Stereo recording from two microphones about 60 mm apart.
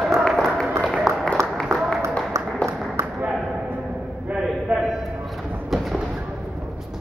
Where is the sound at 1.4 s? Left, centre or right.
Right.